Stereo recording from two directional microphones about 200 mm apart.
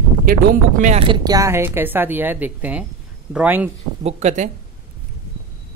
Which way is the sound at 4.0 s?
35° right (ahead or behind).